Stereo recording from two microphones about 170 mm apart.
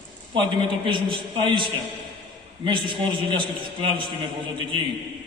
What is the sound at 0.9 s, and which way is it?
A man's voice, 30° right (ahead or behind).